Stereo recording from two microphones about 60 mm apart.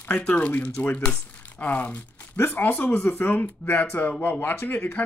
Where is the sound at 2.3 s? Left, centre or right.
Left.